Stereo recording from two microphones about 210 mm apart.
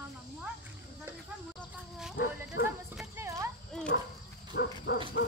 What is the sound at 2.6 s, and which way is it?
Clip-clop, 10° right (ahead or behind).